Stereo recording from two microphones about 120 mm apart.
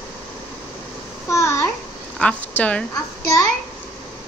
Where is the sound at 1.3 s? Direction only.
25° left (ahead or behind).